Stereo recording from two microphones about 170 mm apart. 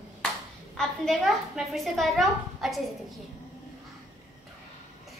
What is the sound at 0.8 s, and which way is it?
Speech, centre (ahead or behind).